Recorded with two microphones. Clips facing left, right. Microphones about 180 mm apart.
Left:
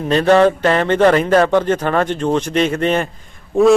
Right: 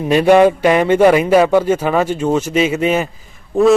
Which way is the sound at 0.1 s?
10° right (ahead or behind).